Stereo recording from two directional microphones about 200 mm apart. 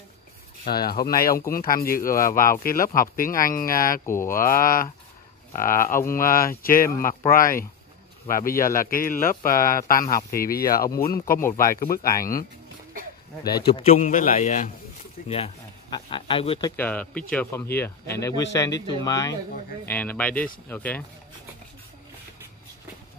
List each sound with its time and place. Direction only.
0.7 s speech: 50° left (ahead or behind)
4.0 s speech: 15° left (ahead or behind)
4.3 s speech: 45° left (ahead or behind)
13.6 s a man's voice: 30° left (ahead or behind)
16.7 s speech: 10° left (ahead or behind)